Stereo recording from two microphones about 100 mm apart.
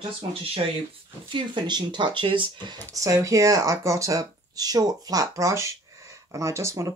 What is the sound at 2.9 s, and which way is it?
Speech, 35° right (ahead or behind).